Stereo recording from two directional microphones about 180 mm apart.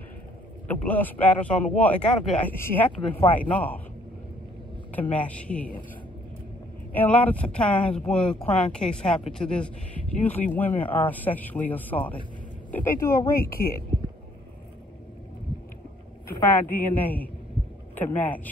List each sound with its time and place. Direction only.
0.7 s speech: 10° left (ahead or behind)
3.0 s speech: 30° left (ahead or behind)
3.3 s speech: 10° left (ahead or behind)
4.9 s speech: 10° left (ahead or behind)
6.9 s a woman's voice: 10° left (ahead or behind)
13.5 s speech: 55° left (ahead or behind)
16.4 s speech: 10° left (ahead or behind)